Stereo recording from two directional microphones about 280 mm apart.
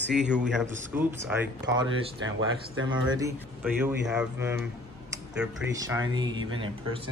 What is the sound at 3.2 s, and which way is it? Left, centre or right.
A man's voice, centre.